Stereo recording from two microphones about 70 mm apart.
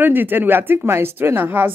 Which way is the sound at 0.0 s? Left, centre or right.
Right.